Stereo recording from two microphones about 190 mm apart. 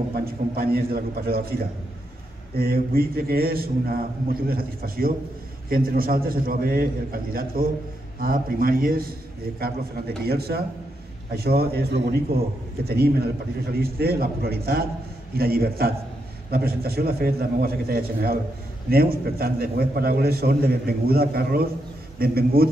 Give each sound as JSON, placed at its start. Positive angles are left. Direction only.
{"t": 0.1, "sound": "a man's voice", "side_deg": -55}